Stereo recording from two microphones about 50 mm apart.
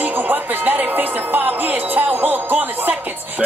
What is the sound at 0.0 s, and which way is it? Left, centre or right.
Music, right.